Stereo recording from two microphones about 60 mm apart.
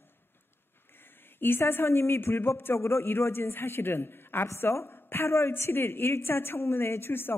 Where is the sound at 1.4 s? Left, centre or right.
Left.